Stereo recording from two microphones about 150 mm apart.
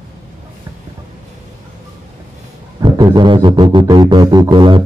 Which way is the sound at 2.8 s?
30° right (ahead or behind).